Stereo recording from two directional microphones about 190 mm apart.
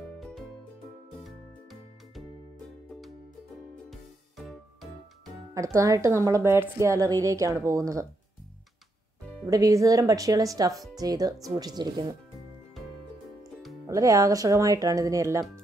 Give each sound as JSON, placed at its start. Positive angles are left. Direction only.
{"t": 0.2, "sound": "music", "side_deg": 0}
{"t": 3.9, "sound": "music", "side_deg": 0}
{"t": 5.5, "sound": "a woman's voice", "side_deg": -15}
{"t": 9.5, "sound": "a woman's voice", "side_deg": -20}
{"t": 13.4, "sound": "music", "side_deg": 0}
{"t": 13.8, "sound": "a woman's voice", "side_deg": -20}